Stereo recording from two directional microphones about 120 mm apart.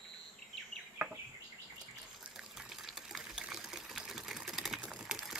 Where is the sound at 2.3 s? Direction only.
5° right (ahead or behind).